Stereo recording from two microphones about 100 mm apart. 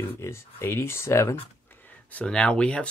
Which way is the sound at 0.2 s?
25° left (ahead or behind).